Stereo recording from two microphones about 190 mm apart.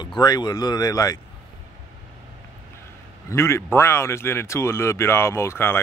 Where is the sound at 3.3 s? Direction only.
15° left (ahead or behind).